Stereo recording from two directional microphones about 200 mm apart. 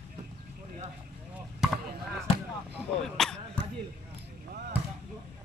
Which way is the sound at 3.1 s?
5° left (ahead or behind).